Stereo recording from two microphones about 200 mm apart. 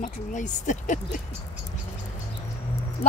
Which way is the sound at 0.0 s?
40° left (ahead or behind).